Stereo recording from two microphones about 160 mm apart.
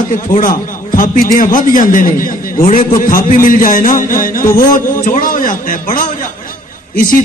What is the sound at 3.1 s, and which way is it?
A man's voice, 55° left (ahead or behind).